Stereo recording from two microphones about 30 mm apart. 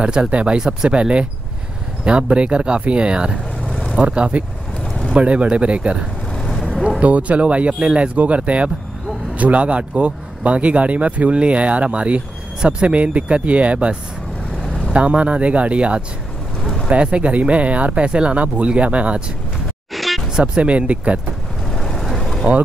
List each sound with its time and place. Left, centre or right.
0.0 s speech: right
7.0 s speech: right
18.4 s speech: right
19.9 s a sound: centre
20.5 s speech: right
21.7 s vehicle: centre